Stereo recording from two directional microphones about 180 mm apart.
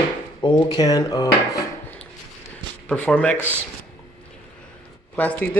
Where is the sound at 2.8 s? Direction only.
5° left (ahead or behind).